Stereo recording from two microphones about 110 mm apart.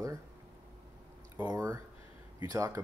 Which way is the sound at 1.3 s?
20° right (ahead or behind).